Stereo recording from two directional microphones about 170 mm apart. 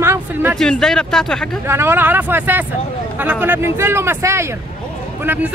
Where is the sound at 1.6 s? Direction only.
15° right (ahead or behind).